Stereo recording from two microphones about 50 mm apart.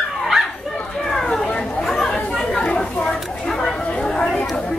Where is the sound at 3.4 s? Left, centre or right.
Centre.